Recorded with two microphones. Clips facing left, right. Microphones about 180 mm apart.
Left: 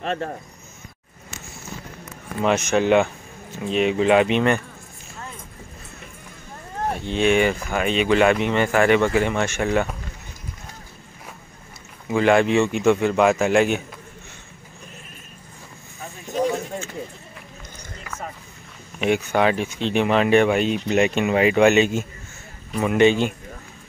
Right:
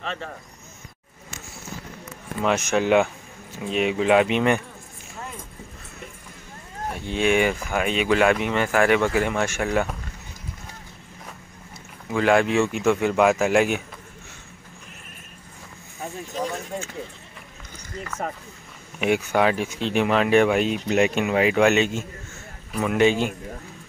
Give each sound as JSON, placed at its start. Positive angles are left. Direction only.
{"t": 0.0, "sound": "speech", "side_deg": 50}
{"t": 2.4, "sound": "speech", "side_deg": 0}
{"t": 7.1, "sound": "speech", "side_deg": -10}
{"t": 12.1, "sound": "speech", "side_deg": 0}
{"t": 18.9, "sound": "speech", "side_deg": -5}